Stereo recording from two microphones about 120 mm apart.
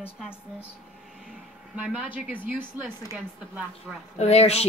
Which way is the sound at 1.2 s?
10° right (ahead or behind).